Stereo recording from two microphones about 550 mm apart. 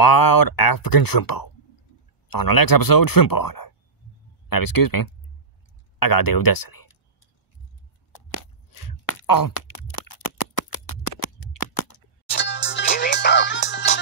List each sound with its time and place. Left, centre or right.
0.0 s speech: left
8.3 s a sound: left
12.3 s music: centre